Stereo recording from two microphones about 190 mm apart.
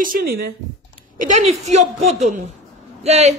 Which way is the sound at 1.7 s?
35° right (ahead or behind).